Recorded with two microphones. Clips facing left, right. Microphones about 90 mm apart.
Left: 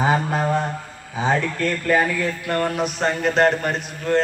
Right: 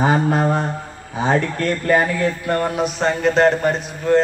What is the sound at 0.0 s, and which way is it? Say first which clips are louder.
A man's voice: right 3 dB; 40° right (ahead or behind).